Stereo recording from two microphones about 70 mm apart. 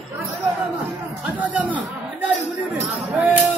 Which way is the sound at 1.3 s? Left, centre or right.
Right.